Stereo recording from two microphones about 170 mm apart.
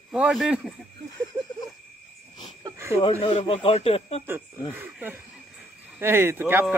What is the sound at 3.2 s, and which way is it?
Speech, 35° left (ahead or behind).